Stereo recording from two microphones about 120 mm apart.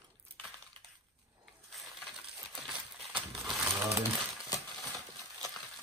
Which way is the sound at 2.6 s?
5° right (ahead or behind).